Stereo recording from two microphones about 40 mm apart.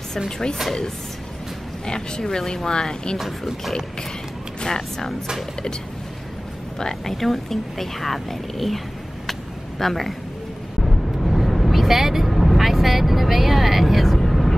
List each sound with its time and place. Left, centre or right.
1.9 s speech: centre
4.6 s speech: centre
6.8 s speech: centre
7.2 s speech: centre
9.3 s a sound: centre
10.8 s vehicle: centre